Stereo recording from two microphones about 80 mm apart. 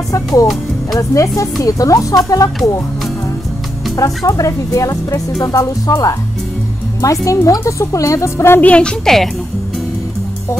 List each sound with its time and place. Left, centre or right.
0.1 s speech: left
4.3 s speech: left
7.0 s a woman's voice: left
8.5 s speech: centre